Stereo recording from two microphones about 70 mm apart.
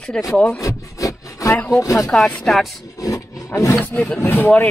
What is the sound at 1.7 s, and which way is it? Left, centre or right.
Speech, left.